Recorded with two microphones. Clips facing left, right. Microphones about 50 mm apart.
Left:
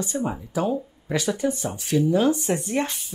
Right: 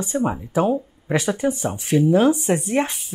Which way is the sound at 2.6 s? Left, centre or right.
Centre.